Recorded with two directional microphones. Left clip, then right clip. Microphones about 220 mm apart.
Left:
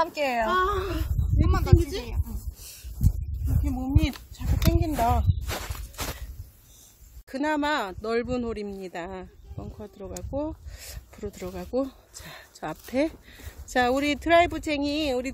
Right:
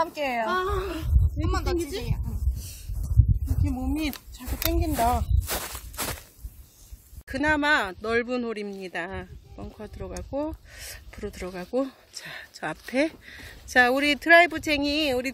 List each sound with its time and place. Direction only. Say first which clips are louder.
0.0 s speech: left 1 dB; 10° left (ahead or behind)
1.5 s a woman's voice: even; 35° right (ahead or behind)
1.8 s speech: even; centre (ahead or behind)
3.6 s speech: even; 15° right (ahead or behind)
5.5 s walk: right 4 dB; 45° right (ahead or behind)
7.2 s speech: right 3 dB; centre (ahead or behind)